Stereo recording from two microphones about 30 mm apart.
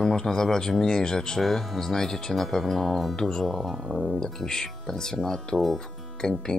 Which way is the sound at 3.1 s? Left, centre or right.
Centre.